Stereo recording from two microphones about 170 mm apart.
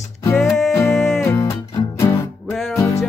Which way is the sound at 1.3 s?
20° left (ahead or behind).